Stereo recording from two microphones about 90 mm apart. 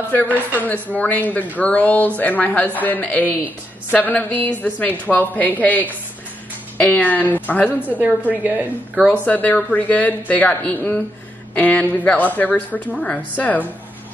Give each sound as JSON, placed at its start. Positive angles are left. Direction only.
{"t": 0.6, "sound": "a woman's voice", "side_deg": 20}
{"t": 7.8, "sound": "a woman's voice", "side_deg": -15}
{"t": 9.1, "sound": "a woman's voice", "side_deg": 15}